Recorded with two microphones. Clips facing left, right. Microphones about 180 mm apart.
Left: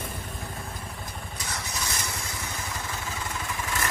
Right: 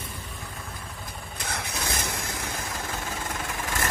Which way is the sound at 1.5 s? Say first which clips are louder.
Right 3 dB; 55° right (ahead or behind).